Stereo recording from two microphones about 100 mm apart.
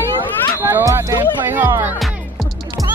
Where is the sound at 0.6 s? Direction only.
20° right (ahead or behind).